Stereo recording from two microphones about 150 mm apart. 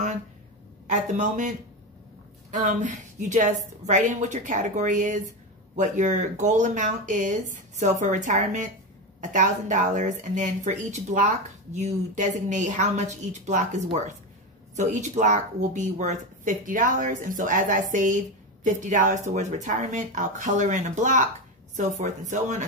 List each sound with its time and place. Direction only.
0.8 s speech: 55° right (ahead or behind)
2.5 s speech: 55° right (ahead or behind)